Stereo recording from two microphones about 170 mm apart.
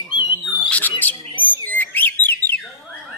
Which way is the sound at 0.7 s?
10° left (ahead or behind).